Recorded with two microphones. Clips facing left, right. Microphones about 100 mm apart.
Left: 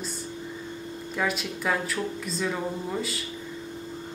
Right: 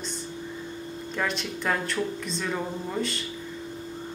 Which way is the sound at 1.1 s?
5° left (ahead or behind).